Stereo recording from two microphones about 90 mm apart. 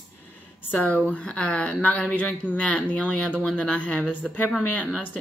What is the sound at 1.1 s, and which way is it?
A woman's voice, 15° left (ahead or behind).